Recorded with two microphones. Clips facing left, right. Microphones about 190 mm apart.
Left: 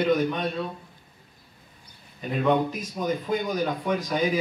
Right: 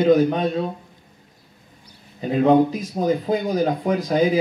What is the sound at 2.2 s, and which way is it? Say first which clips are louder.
Speech: right 7 dB; 35° right (ahead or behind).